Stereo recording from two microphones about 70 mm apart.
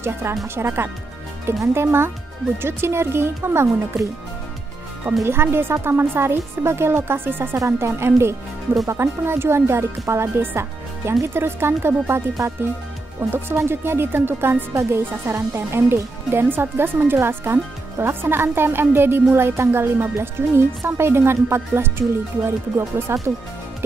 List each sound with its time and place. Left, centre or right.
0.0 s speech: right
5.2 s speech: right
7.5 s speech: right